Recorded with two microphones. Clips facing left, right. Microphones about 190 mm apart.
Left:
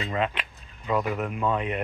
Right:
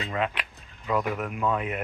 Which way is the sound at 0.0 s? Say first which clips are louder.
Left 1 dB; centre (ahead or behind).